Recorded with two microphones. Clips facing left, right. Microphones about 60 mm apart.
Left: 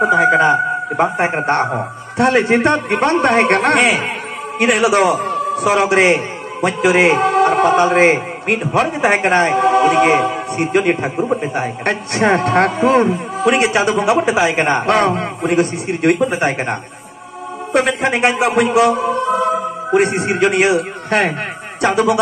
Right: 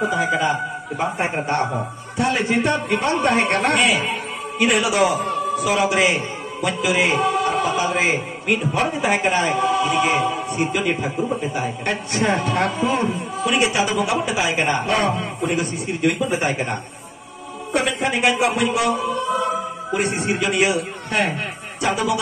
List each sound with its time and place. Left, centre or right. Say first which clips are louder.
0.0 s a man's voice: left 8 dB; left
17.7 s a man's voice: left 5 dB; left